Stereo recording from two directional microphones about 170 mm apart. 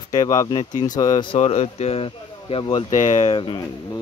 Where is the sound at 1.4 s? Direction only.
40° left (ahead or behind).